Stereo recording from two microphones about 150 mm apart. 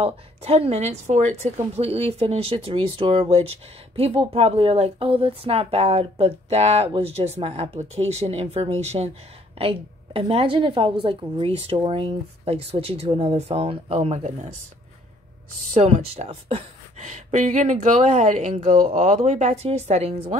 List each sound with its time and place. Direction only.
0.0 s a woman's voice: 40° right (ahead or behind)
15.7 s a woman's voice: 45° right (ahead or behind)